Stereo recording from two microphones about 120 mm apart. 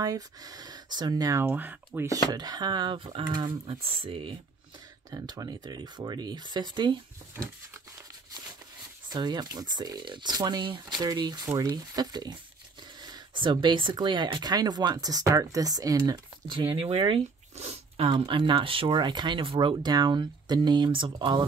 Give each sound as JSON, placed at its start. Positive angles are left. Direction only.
{"t": 0.0, "sound": "speech", "side_deg": -30}
{"t": 1.4, "sound": "speech", "side_deg": -15}
{"t": 2.0, "sound": "speech", "side_deg": -30}
{"t": 3.7, "sound": "speech", "side_deg": -55}
{"t": 5.1, "sound": "speech", "side_deg": -35}
{"t": 9.1, "sound": "speech", "side_deg": -35}
{"t": 17.1, "sound": "zipper", "side_deg": -55}
{"t": 18.1, "sound": "speech", "side_deg": -40}